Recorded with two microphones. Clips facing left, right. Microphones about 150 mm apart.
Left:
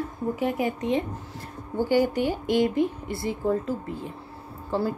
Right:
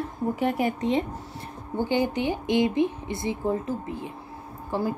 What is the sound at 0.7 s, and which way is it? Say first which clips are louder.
A woman's voice: right 1 dB; 30° right (ahead or behind).